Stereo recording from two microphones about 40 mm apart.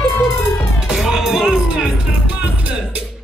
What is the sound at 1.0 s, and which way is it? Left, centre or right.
Music, centre.